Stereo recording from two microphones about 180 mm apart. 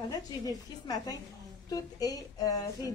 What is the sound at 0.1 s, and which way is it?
Speech, 20° left (ahead or behind).